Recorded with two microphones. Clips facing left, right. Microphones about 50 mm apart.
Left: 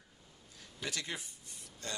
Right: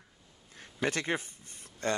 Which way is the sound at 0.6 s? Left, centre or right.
Right.